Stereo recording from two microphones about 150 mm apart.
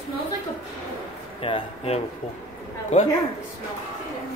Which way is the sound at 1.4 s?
40° left (ahead or behind).